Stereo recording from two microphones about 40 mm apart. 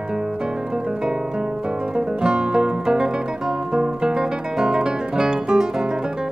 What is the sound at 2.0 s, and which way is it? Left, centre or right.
Music, right.